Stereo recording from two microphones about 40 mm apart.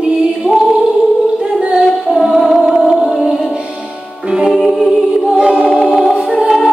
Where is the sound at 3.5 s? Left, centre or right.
Right.